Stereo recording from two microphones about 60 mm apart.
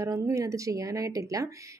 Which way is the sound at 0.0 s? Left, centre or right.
Right.